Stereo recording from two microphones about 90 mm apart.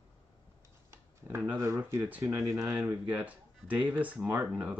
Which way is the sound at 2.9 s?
15° right (ahead or behind).